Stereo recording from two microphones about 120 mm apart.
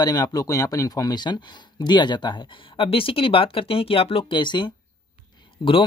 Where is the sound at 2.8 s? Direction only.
50° left (ahead or behind).